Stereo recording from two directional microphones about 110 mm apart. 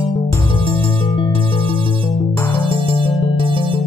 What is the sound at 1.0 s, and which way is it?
Music, 50° left (ahead or behind).